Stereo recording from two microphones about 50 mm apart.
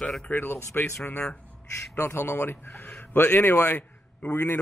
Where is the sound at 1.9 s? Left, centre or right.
Left.